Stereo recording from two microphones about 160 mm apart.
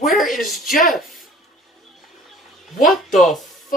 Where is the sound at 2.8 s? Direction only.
Centre (ahead or behind).